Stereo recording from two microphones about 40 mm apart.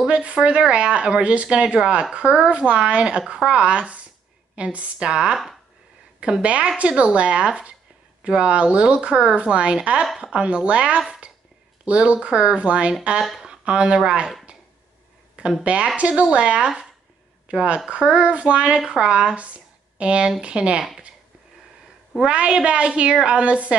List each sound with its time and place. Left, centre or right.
0.1 s a woman's voice: right
4.9 s speech: centre
6.4 s speech: right
15.6 s a woman's voice: right
22.2 s a woman's voice: right